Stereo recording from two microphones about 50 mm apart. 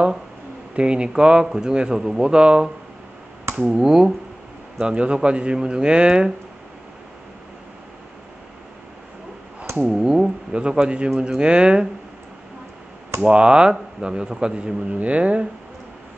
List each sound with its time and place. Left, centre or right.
0.7 s speech: right
9.8 s speech: centre
13.2 s speech: centre